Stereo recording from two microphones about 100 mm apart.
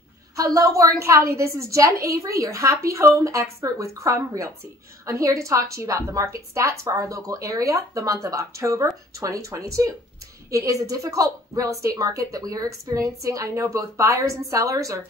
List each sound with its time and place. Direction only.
0.4 s a woman's voice: 35° right (ahead or behind)